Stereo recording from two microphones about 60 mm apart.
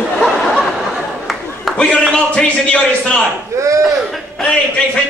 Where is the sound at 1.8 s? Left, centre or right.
Centre.